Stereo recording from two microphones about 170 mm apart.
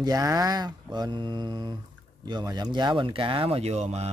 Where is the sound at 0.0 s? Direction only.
20° right (ahead or behind).